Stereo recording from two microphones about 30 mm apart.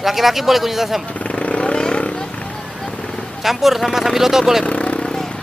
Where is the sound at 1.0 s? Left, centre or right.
Left.